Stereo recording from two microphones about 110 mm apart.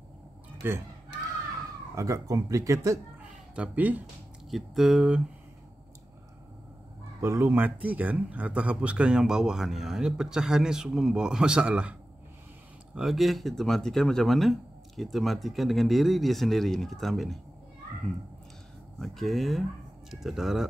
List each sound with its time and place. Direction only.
0.6 s speech: 20° right (ahead or behind)
2.0 s speech: 30° right (ahead or behind)
3.5 s speech: 15° right (ahead or behind)
4.5 s speech: centre (ahead or behind)
7.2 s speech: 25° right (ahead or behind); by 17.4 s centre (ahead or behind)
18.9 s speech: centre (ahead or behind)